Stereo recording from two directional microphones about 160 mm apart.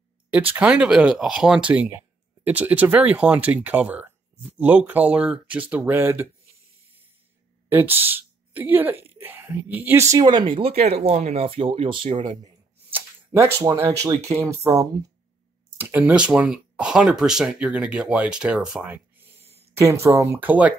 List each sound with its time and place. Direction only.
0.3 s speech: 10° right (ahead or behind)
7.7 s speech: 15° right (ahead or behind); by 12.2 s 30° right (ahead or behind)
12.9 s speech: 15° right (ahead or behind)
19.8 s speech: 20° right (ahead or behind)